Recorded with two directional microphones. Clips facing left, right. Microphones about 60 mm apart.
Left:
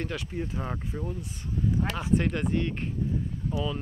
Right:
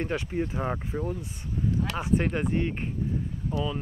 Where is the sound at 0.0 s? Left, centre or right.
Right.